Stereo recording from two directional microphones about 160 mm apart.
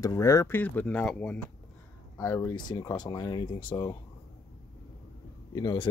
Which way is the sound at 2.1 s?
20° left (ahead or behind).